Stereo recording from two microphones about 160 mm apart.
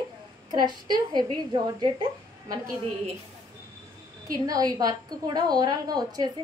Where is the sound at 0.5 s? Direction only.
25° right (ahead or behind).